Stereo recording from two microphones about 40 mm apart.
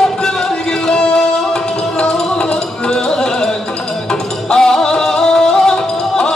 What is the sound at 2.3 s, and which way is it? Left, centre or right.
Music, centre.